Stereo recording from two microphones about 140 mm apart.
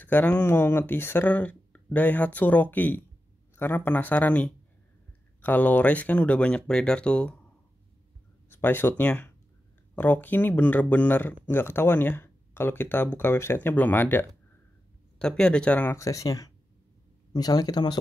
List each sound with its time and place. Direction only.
0.0 s speech: 10° left (ahead or behind)
8.5 s speech: 15° left (ahead or behind)
16.0 s speech: 25° left (ahead or behind)